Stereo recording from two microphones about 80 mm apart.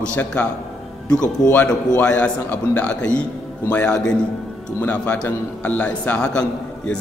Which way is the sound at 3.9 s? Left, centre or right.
Centre.